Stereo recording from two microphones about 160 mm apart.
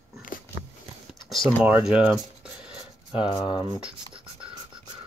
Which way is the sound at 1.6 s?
5° right (ahead or behind).